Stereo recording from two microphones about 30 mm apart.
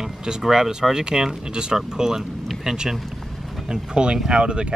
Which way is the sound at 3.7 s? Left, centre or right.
Right.